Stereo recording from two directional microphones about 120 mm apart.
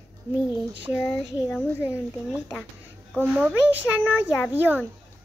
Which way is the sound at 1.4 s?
15° left (ahead or behind).